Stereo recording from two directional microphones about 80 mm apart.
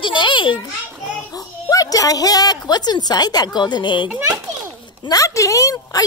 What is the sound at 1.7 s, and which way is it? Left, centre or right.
A woman's voice, left.